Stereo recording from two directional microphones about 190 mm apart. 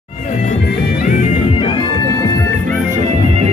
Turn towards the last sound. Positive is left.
turn(degrees=-35)  # may be behind; listen again after turning